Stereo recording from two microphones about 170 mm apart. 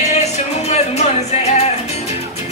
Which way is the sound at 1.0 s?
40° left (ahead or behind).